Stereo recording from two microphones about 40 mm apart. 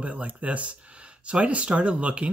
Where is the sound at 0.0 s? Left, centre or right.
Right.